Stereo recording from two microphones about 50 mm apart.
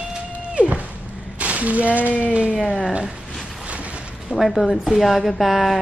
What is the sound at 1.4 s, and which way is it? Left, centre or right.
Speech, right.